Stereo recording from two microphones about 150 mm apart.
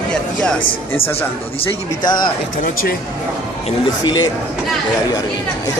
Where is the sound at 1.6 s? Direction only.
30° left (ahead or behind).